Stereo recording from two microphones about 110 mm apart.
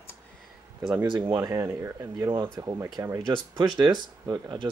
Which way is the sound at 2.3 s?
40° right (ahead or behind).